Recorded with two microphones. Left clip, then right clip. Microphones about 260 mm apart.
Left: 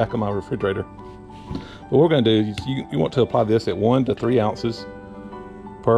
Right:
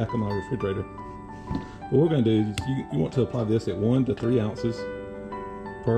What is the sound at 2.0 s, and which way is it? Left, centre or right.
Speech, centre.